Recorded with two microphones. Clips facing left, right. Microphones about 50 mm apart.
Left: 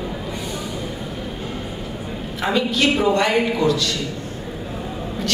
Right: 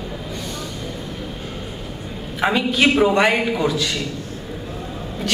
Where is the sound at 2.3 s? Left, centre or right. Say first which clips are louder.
Right 2 dB; centre.